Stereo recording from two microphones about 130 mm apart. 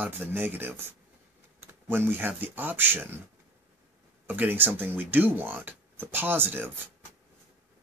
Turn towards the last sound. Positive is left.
turn(degrees=-15)  # may be behind; listen again after turning